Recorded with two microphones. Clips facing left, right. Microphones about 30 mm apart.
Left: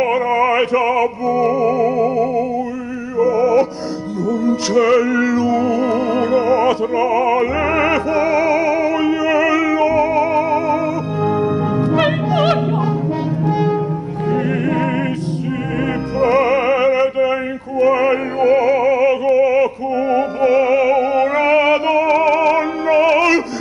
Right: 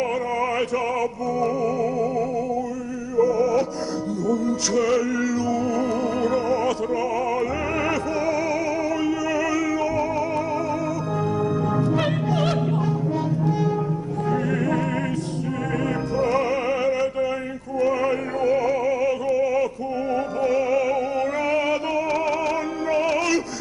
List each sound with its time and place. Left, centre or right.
0.0 s music: left
13.4 s french horn: left
14.3 s music: left
16.2 s opera: left